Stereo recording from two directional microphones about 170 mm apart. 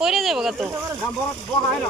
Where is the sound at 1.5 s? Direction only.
25° left (ahead or behind).